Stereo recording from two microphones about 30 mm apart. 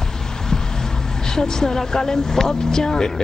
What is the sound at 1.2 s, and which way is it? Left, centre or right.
Speech, left.